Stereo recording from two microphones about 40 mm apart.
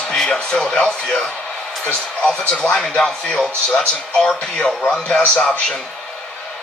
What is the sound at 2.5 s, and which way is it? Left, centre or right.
A man's voice, left.